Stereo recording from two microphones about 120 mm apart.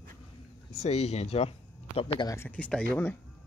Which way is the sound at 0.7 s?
65° left (ahead or behind).